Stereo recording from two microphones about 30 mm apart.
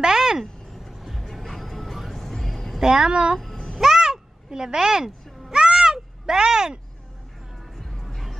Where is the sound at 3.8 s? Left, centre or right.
Centre.